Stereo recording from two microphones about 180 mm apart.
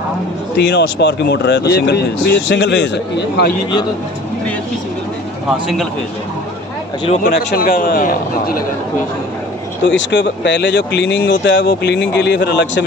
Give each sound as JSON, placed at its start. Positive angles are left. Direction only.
{"t": 0.6, "sound": "speech", "side_deg": 70}
{"t": 7.2, "sound": "a man's voice", "side_deg": 55}
{"t": 9.8, "sound": "speech", "side_deg": 90}